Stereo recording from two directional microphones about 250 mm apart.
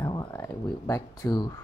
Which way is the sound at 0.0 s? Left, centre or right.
Centre.